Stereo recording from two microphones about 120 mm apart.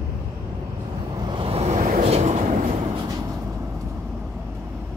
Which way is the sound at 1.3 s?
50° right (ahead or behind).